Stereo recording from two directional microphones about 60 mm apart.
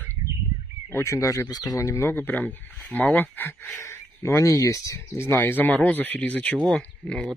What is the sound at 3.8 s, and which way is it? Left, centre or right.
Speech, left.